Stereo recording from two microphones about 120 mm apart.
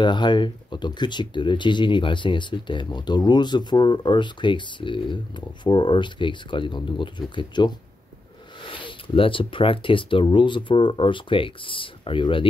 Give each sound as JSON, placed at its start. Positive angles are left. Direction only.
{"t": 0.0, "sound": "speech", "side_deg": 40}